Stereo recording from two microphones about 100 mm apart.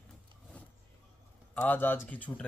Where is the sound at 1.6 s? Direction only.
20° left (ahead or behind).